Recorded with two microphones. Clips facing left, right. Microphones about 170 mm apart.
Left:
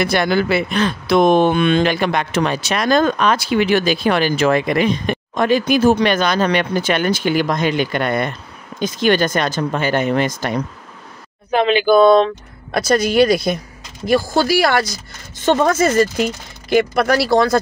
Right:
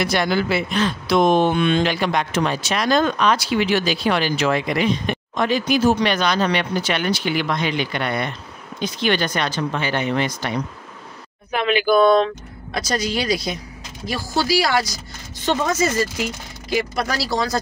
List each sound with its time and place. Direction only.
0.0 s speech: 55° left (ahead or behind)
11.5 s speech: 25° left (ahead or behind)
12.7 s speech: 55° left (ahead or behind)